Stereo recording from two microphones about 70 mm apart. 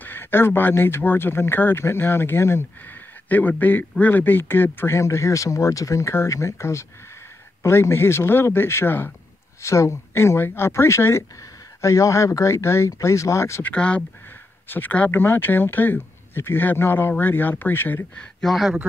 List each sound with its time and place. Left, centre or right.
0.0 s speech: left
3.3 s speech: left
9.6 s speech: left
13.6 s speech: centre
18.4 s speech: centre